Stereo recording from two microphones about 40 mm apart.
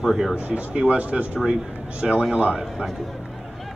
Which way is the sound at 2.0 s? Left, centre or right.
Centre.